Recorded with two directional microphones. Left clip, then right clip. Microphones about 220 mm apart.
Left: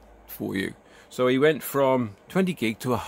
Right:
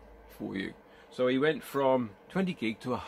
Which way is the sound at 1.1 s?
50° left (ahead or behind).